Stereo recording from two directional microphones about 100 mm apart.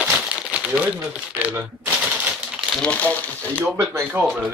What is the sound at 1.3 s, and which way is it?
Speech, 15° right (ahead or behind).